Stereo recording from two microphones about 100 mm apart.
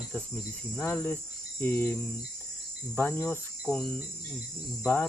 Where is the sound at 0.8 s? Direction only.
15° left (ahead or behind).